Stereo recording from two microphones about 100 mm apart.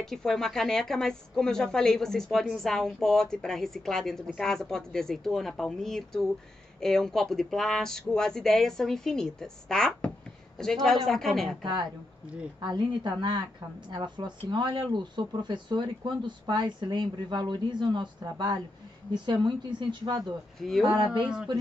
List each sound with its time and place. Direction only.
0.0 s speech: 5° left (ahead or behind)
12.7 s a woman's voice: 50° right (ahead or behind)
20.6 s speech: 5° left (ahead or behind)
21.0 s a woman's voice: 50° right (ahead or behind)